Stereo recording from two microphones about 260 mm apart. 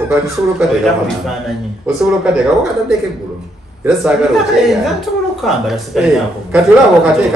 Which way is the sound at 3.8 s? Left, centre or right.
Centre.